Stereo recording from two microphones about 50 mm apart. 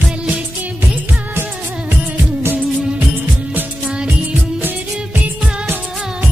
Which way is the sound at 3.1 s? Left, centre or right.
Right.